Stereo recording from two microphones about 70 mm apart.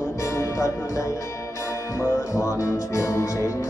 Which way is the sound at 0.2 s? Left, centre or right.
Left.